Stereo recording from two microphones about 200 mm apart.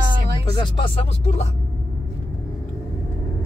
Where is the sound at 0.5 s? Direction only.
25° left (ahead or behind).